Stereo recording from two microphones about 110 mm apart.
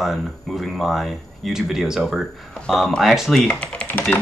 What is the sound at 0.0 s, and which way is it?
Speech, centre (ahead or behind).